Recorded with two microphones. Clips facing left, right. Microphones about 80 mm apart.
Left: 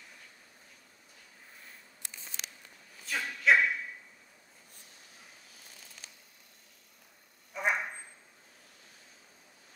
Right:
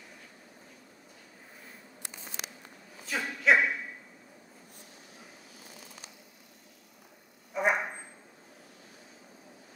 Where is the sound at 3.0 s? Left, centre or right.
Centre.